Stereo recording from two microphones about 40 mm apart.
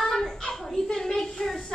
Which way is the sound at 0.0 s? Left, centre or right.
Centre.